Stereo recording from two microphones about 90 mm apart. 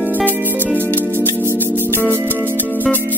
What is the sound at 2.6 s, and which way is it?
Music, 20° left (ahead or behind).